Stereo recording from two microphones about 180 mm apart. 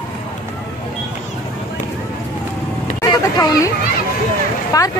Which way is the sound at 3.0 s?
20° left (ahead or behind).